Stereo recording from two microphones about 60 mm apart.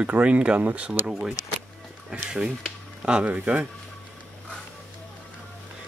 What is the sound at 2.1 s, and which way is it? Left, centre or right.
Speech, centre.